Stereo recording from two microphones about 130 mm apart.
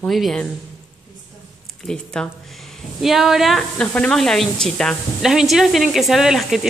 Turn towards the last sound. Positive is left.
turn(degrees=-5)  # may be behind; listen again after turning